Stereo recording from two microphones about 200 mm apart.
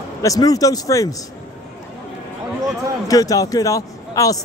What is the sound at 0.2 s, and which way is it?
Speech, 15° left (ahead or behind).